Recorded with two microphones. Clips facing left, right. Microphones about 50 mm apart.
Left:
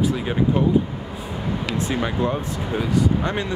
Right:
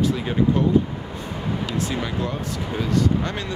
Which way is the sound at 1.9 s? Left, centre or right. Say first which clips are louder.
Left 4 dB; left.